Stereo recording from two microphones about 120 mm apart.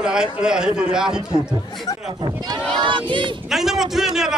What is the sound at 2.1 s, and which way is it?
A child's voice, 40° right (ahead or behind).